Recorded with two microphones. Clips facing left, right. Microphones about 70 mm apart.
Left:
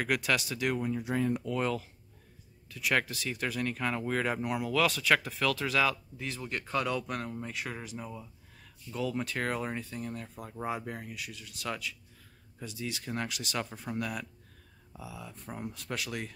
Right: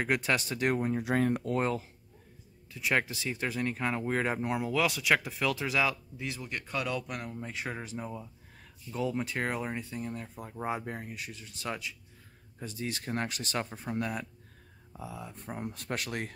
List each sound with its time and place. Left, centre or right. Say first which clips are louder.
0.0 s speech: right 1 dB; right
1.0 s speech: right 2 dB; right
1.6 s speech: right 1 dB; right
4.8 s speech: left 1 dB; centre
7.5 s speech: right 1 dB; right
12.6 s speech: right 2 dB; right
15.7 s speech: right 1 dB; right